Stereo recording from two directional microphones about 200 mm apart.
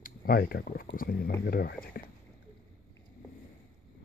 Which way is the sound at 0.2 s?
45° left (ahead or behind).